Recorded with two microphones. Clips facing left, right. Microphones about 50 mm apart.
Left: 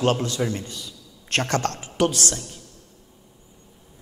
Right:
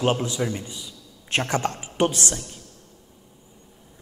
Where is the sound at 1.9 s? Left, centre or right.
Right.